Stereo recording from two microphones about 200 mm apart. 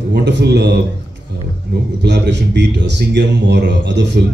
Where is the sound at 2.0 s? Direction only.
60° right (ahead or behind).